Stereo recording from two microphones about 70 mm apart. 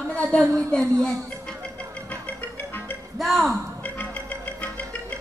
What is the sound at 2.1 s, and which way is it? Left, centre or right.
Music, left.